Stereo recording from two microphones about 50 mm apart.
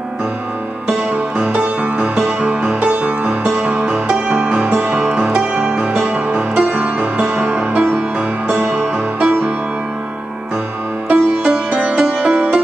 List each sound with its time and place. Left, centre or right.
0.8 s music: right
2.8 s music: right
9.2 s music: right
11.1 s music: right